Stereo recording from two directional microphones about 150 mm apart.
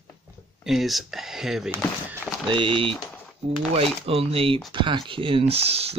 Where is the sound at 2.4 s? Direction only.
35° right (ahead or behind).